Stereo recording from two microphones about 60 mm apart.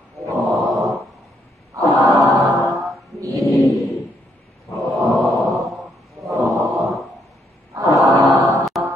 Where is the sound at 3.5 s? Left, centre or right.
Centre.